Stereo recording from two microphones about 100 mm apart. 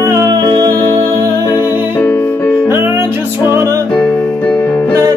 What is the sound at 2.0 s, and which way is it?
Music, 15° left (ahead or behind).